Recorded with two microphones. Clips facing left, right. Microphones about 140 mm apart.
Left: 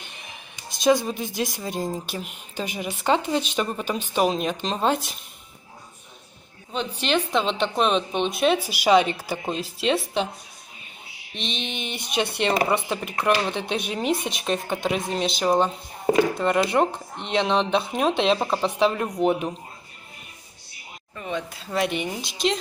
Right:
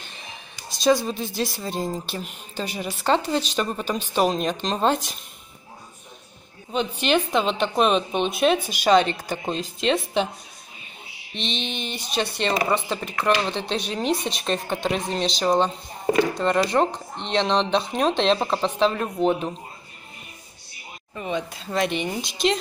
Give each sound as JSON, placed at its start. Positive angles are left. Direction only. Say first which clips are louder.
{"t": 0.8, "sound": "speech", "louder": "even", "side_deg": 15}
{"t": 7.0, "sound": "speech", "louder": "right 1 dB", "side_deg": -5}
{"t": 11.3, "sound": "speech", "louder": "right 2 dB", "side_deg": 5}
{"t": 21.2, "sound": "speech", "louder": "right 2 dB", "side_deg": -15}
{"t": 21.7, "sound": "speech", "louder": "right 1 dB", "side_deg": 5}